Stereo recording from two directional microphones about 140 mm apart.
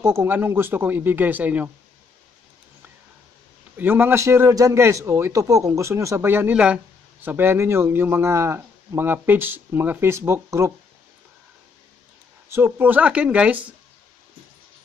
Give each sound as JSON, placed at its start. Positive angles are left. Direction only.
{"t": 0.0, "sound": "a man's voice", "side_deg": -20}
{"t": 3.7, "sound": "a man's voice", "side_deg": -15}
{"t": 12.4, "sound": "a man's voice", "side_deg": -15}